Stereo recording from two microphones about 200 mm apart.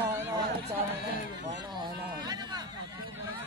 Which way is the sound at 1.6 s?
20° right (ahead or behind).